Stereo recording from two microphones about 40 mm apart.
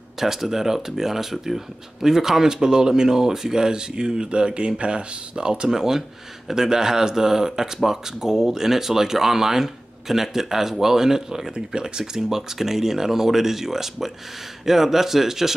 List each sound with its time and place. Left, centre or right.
0.2 s speech: centre
5.7 s speech: centre